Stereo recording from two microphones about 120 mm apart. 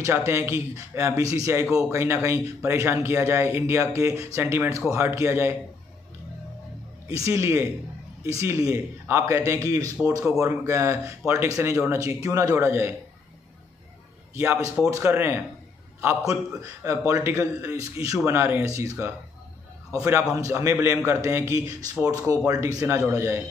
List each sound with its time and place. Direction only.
0.0 s a man's voice: 25° right (ahead or behind)
7.1 s a man's voice: 25° right (ahead or behind)
14.3 s a man's voice: 20° right (ahead or behind)